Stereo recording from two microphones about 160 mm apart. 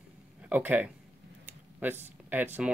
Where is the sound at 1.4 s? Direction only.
10° right (ahead or behind).